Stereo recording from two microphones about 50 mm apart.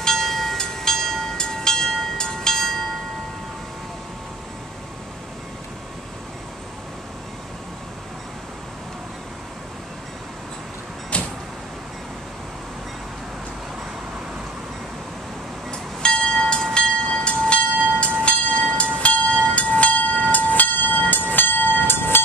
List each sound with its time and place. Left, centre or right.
0.0 s train: centre
11.1 s vehicle: left
15.7 s train: centre; by 22.3 s left